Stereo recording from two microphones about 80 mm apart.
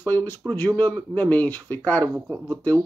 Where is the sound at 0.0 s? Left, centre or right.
Left.